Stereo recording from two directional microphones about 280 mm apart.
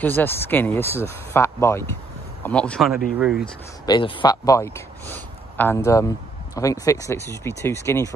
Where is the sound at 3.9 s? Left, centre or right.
Centre.